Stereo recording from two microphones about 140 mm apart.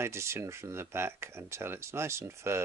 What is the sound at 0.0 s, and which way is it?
Speech, 20° right (ahead or behind).